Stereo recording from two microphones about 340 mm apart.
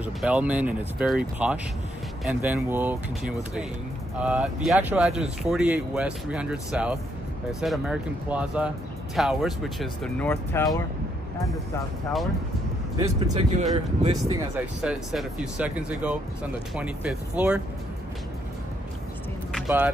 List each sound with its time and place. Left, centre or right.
0.0 s speech: centre
13.3 s speech: centre
14.8 s speech: centre
19.5 s vehicle: centre